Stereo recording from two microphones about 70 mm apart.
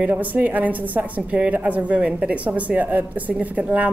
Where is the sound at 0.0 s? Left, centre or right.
Right.